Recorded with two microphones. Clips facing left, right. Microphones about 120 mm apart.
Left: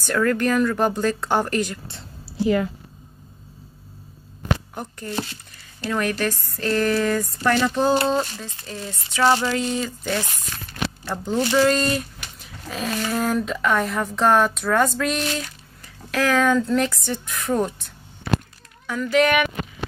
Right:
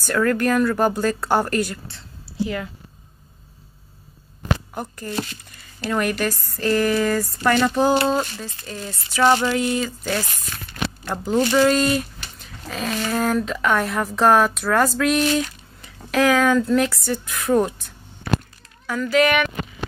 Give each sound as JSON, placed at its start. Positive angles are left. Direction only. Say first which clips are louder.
{"t": 0.0, "sound": "speech", "louder": "right 1 dB", "side_deg": 0}
{"t": 4.7, "sound": "speech", "louder": "right 1 dB", "side_deg": 0}
{"t": 15.8, "sound": "a sound", "louder": "right 4 dB", "side_deg": -15}
{"t": 16.3, "sound": "speech", "louder": "right 1 dB", "side_deg": -5}
{"t": 18.9, "sound": "speech", "louder": "right 1 dB", "side_deg": 0}